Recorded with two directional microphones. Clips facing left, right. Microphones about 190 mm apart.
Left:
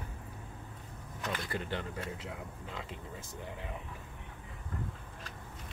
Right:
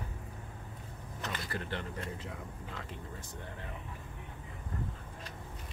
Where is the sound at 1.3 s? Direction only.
15° left (ahead or behind).